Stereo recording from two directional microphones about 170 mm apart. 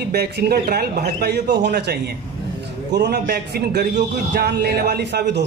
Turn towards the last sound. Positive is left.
turn(degrees=-75)  # may be behind; listen again after turning